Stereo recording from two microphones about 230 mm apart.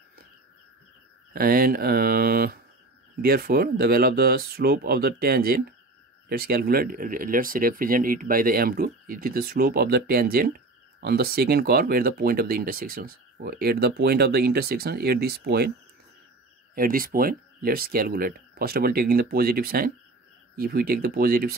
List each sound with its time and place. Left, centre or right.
1.3 s speech: right
16.7 s speech: right